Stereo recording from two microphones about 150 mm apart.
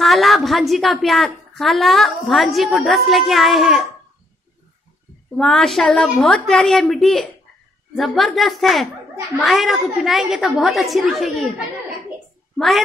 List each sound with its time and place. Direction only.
0.0 s a woman's voice: centre (ahead or behind)
5.3 s a woman's voice: 5° left (ahead or behind)
12.5 s a child's voice: centre (ahead or behind)